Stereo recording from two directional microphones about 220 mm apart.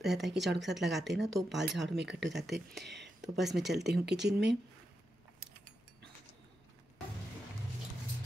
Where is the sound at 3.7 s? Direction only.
50° right (ahead or behind).